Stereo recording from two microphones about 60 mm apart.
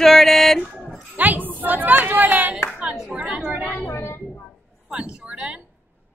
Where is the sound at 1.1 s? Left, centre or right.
Right.